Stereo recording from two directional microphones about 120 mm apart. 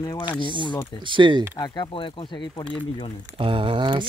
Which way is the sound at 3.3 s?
50° right (ahead or behind).